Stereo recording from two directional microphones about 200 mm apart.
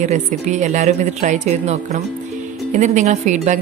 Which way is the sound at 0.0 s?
35° right (ahead or behind).